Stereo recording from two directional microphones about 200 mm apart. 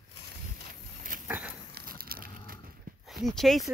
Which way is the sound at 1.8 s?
50° right (ahead or behind).